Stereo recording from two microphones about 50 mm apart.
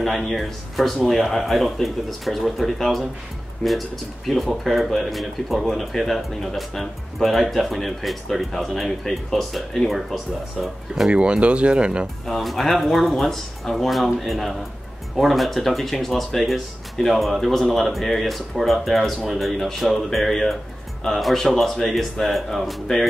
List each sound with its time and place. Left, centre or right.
0.0 s speech: centre
4.3 s speech: centre
11.1 s speech: right
12.3 s speech: centre